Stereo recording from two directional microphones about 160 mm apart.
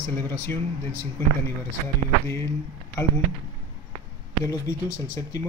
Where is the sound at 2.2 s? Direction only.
15° left (ahead or behind).